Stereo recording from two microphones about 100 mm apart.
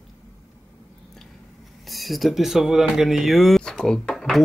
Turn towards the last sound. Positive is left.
turn(degrees=5)  # may be behind; listen again after turning